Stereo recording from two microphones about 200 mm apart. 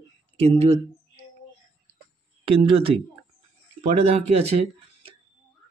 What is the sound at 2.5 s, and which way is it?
Speech, 25° right (ahead or behind).